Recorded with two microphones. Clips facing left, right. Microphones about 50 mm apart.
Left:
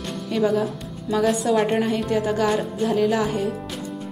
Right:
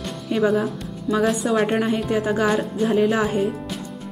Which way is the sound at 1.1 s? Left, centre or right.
Centre.